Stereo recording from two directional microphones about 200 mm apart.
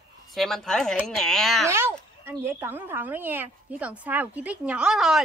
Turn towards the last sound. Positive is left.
turn(degrees=-5)  # may be behind; listen again after turning